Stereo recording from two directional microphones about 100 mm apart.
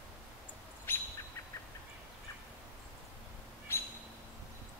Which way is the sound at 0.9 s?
20° left (ahead or behind).